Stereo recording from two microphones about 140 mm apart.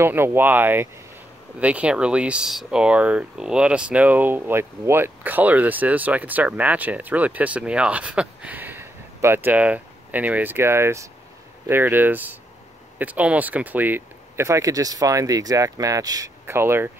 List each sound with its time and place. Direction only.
0.0 s speech: 15° right (ahead or behind)